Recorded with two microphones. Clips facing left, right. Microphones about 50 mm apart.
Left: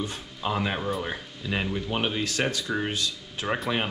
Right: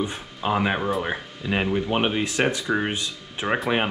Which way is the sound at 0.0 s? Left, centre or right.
Right.